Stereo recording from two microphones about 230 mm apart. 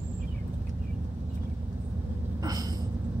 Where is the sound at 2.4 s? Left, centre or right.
Centre.